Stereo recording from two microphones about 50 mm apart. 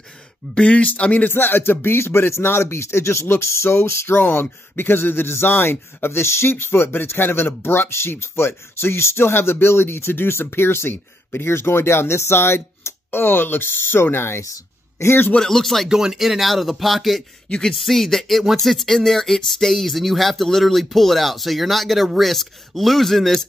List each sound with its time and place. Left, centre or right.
0.6 s speech: left
1.3 s speech: left
4.2 s speech: left
15.3 s speech: centre
15.9 s speech: centre
17.5 s speech: centre
17.7 s speech: centre